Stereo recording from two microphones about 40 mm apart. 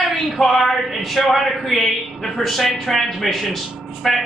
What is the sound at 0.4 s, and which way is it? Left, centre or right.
Speech, centre.